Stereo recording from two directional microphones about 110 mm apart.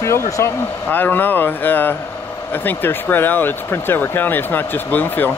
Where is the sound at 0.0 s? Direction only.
25° left (ahead or behind).